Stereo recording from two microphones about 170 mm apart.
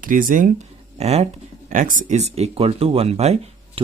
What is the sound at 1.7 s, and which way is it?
Speech, 50° right (ahead or behind).